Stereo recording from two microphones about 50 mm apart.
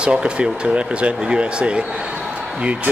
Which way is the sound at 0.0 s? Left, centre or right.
Centre.